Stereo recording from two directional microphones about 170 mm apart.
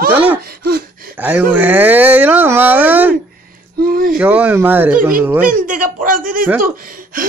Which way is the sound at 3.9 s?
60° right (ahead or behind).